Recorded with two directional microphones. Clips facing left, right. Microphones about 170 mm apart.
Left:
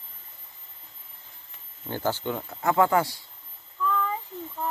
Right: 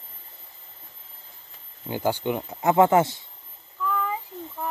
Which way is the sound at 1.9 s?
15° right (ahead or behind).